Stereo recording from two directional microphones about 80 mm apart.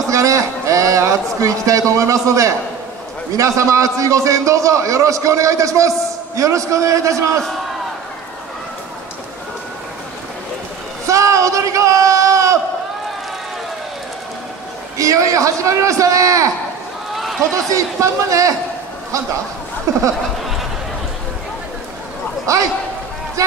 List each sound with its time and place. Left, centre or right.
0.1 s a sound: right
3.3 s a man's voice: right
11.1 s a sound: right
15.0 s a man's voice: right
17.1 s run: centre
17.4 s a man's voice: right
19.9 s a man's voice: right
22.5 s a man's voice: right